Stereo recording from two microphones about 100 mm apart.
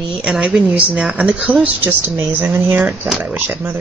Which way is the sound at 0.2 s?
5° right (ahead or behind).